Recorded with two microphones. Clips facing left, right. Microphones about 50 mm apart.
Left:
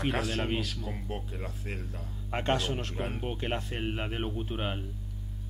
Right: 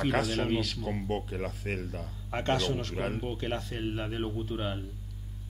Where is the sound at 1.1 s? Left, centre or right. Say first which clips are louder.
Right 5 dB; right.